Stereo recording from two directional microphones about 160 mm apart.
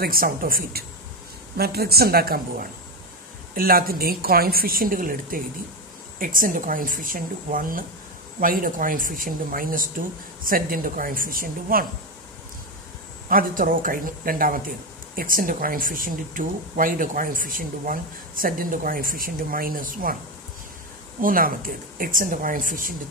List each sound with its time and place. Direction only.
0.0 s speech: 65° right (ahead or behind)
1.6 s a woman's voice: 75° right (ahead or behind)
13.3 s speech: 60° right (ahead or behind)
21.2 s speech: 60° right (ahead or behind)